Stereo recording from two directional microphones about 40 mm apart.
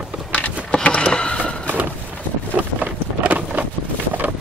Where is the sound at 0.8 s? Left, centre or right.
Left.